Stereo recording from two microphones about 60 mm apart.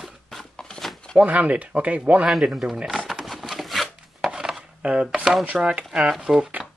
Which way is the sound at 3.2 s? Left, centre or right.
Centre.